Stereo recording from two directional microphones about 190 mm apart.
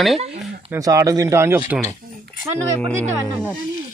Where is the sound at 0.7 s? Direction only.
20° right (ahead or behind).